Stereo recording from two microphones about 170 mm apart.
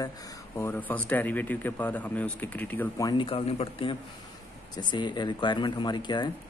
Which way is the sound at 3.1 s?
30° left (ahead or behind).